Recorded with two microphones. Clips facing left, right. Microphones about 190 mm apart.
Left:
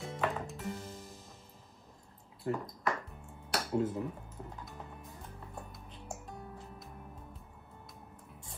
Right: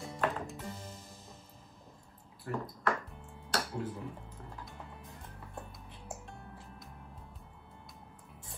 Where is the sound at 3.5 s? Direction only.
25° left (ahead or behind).